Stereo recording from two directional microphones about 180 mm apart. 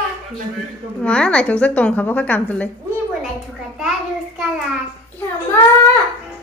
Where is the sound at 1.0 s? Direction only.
5° left (ahead or behind).